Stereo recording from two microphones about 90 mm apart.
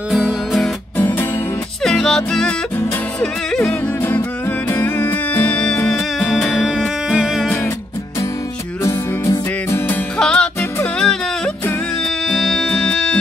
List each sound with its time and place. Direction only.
0.9 s music: 25° left (ahead or behind)
1.8 s music: 5° left (ahead or behind)
4.0 s music: 25° left (ahead or behind); by 7.4 s 5° right (ahead or behind)
8.8 s music: 35° left (ahead or behind)
10.1 s music: 10° left (ahead or behind)